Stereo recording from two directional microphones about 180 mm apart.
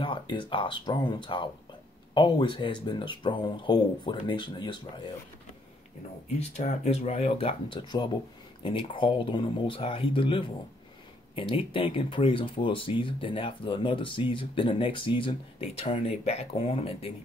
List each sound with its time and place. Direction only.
0.0 s speech: 30° left (ahead or behind)
6.5 s speech: 40° left (ahead or behind)